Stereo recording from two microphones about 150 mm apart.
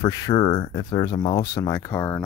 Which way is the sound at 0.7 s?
30° left (ahead or behind).